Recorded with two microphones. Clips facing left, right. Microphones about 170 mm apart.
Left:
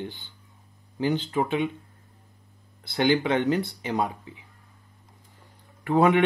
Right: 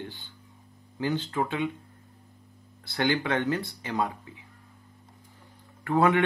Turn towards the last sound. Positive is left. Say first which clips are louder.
# left 3 dB
turn(degrees=20)  # may be behind; listen again after turning